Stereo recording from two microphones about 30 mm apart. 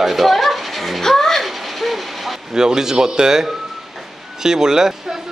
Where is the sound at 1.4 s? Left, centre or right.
Centre.